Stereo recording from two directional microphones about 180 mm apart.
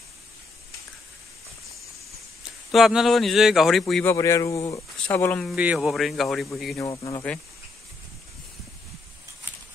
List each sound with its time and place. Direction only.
2.7 s speech: centre (ahead or behind)
4.0 s speech: 15° left (ahead or behind)
5.6 s speech: 5° right (ahead or behind)
6.8 s speech: 20° left (ahead or behind)